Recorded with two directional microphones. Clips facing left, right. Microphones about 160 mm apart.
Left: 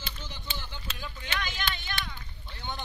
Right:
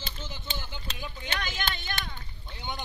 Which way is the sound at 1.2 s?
40° right (ahead or behind).